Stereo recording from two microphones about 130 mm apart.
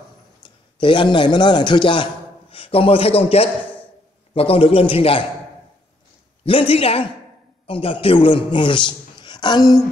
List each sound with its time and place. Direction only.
0.4 s a man's voice: 40° left (ahead or behind)
6.4 s a man's voice: 45° left (ahead or behind)